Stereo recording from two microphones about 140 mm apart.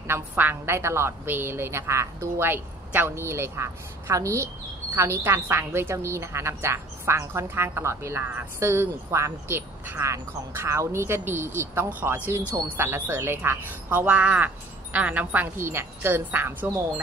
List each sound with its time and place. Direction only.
0.1 s a woman's voice: 15° right (ahead or behind)